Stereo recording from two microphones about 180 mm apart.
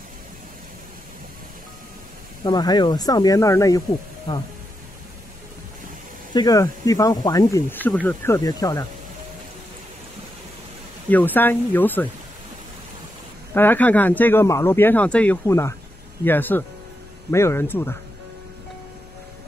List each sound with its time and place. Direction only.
2.4 s speech: 25° left (ahead or behind)
6.3 s speech: 20° left (ahead or behind)
11.1 s speech: 10° left (ahead or behind)
13.5 s speech: 10° left (ahead or behind)